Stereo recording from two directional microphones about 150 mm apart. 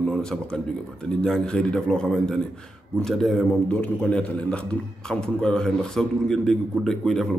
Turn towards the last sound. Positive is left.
turn(degrees=0)  # may be behind; listen again after turning